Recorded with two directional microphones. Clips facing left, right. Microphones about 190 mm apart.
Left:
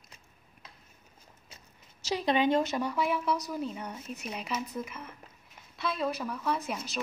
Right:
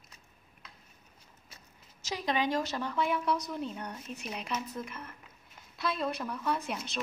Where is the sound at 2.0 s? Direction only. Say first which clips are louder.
Left 5 dB; 30° left (ahead or behind).